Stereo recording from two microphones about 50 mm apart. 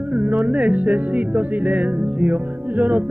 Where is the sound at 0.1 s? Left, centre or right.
Right.